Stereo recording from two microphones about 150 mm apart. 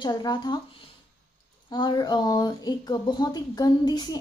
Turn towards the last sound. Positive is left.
turn(degrees=25)  # may be behind; listen again after turning